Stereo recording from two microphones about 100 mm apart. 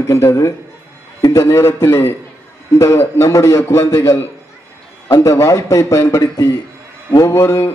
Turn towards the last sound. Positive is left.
turn(degrees=30)  # may be behind; listen again after turning